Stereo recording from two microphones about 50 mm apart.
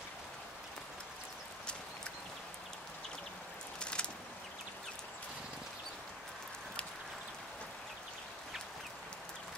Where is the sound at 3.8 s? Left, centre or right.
Centre.